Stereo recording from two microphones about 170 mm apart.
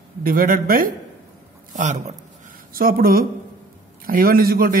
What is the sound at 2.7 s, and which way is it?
Speech, 55° right (ahead or behind).